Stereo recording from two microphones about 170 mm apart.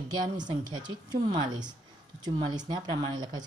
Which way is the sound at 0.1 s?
25° right (ahead or behind).